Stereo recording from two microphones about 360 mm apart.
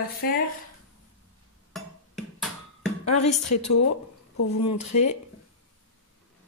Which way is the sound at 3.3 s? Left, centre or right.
Left.